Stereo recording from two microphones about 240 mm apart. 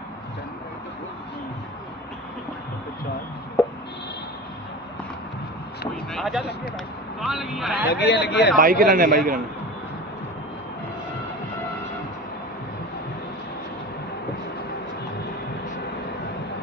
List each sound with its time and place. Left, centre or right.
6.1 s a man's voice: centre
7.9 s a man's voice: left
8.5 s a man's voice: right